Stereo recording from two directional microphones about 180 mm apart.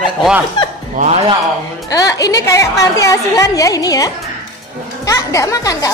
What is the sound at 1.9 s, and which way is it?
A woman's voice, 20° left (ahead or behind).